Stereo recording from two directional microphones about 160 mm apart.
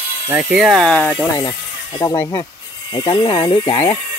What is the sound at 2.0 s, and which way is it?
Speech, 15° left (ahead or behind).